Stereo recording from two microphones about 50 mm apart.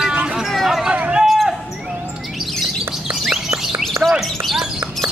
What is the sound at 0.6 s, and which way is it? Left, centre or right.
Speech, centre.